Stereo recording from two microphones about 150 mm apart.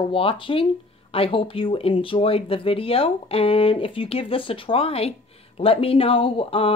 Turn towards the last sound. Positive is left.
turn(degrees=40)  # may be behind; listen again after turning